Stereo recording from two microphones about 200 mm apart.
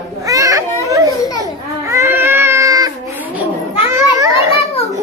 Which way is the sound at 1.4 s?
15° right (ahead or behind).